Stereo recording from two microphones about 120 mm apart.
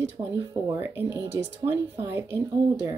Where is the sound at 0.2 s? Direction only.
45° right (ahead or behind).